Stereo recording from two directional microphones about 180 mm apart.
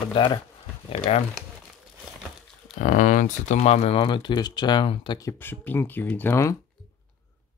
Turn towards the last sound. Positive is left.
turn(degrees=15)  # may be behind; listen again after turning